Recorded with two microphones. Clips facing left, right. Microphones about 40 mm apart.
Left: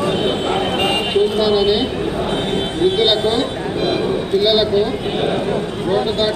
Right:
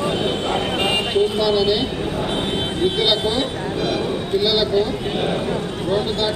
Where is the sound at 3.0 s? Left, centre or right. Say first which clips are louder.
Left 3 dB; left.